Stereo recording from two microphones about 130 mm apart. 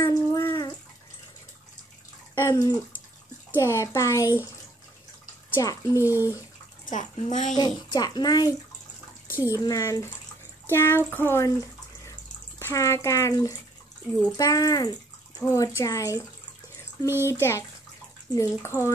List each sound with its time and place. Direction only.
0.0 s bathtub: 20° left (ahead or behind)
0.5 s bathtub: 30° left (ahead or behind)
2.3 s bathtub: 25° left (ahead or behind)
3.5 s speech: 20° left (ahead or behind)
5.5 s speech: 25° left (ahead or behind)
5.9 s speech: 15° right (ahead or behind)
6.9 s speech: 70° left (ahead or behind)
7.5 s a child's voice: 30° left (ahead or behind)
9.6 s speech: 25° left (ahead or behind)
12.1 s bathtub: 25° left (ahead or behind)
14.3 s speech: 30° left (ahead or behind)
17.2 s speech: 20° left (ahead or behind)